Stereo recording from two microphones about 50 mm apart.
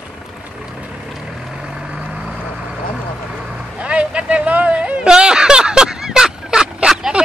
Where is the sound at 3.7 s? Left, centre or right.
Right.